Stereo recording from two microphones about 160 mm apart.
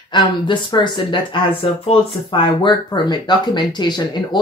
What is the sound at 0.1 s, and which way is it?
Speech, 30° left (ahead or behind).